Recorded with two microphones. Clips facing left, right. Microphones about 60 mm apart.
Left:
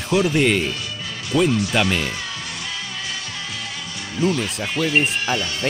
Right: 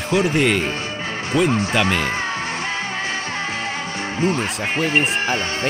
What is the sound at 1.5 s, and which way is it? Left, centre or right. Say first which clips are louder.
Speech: right 1 dB; right.